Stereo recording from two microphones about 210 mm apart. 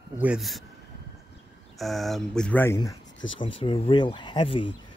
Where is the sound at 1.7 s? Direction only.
Centre (ahead or behind).